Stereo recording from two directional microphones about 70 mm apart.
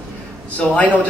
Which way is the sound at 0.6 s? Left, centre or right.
Left.